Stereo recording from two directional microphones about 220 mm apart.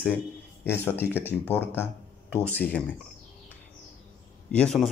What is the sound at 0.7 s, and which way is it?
Speech, 10° left (ahead or behind).